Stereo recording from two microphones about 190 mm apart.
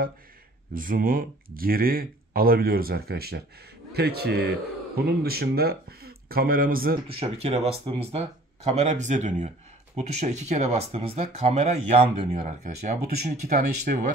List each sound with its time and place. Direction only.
0.7 s a man's voice: 45° right (ahead or behind)
7.1 s speech: 30° right (ahead or behind); by 14.0 s 45° right (ahead or behind)